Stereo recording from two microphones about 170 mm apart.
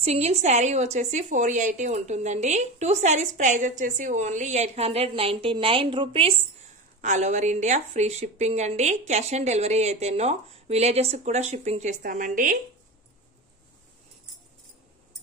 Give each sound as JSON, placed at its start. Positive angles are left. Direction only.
{"t": 0.0, "sound": "a woman's voice", "side_deg": -40}
{"t": 7.0, "sound": "speech", "side_deg": -45}